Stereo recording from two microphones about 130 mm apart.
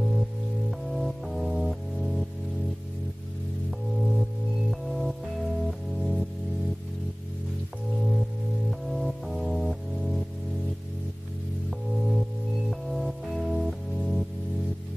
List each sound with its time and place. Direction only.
0.7 s music: centre (ahead or behind)
4.1 s music: centre (ahead or behind)
8.6 s music: centre (ahead or behind)
12.0 s music: centre (ahead or behind)